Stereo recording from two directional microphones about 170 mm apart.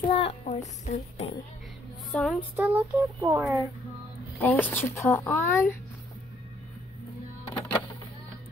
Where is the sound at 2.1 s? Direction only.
Centre (ahead or behind).